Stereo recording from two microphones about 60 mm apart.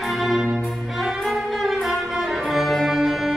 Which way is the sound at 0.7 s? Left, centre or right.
Centre.